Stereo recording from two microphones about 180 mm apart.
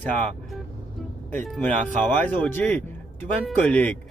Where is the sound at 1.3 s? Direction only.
5° left (ahead or behind).